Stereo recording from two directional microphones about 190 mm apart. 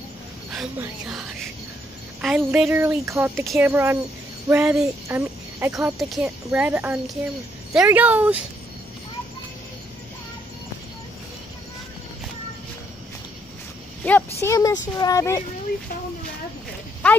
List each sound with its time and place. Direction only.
0.5 s speech: 5° right (ahead or behind)
2.2 s speech: 5° right (ahead or behind)
14.0 s speech: 10° left (ahead or behind)